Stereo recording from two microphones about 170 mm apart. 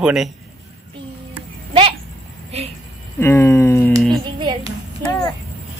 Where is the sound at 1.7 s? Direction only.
35° right (ahead or behind).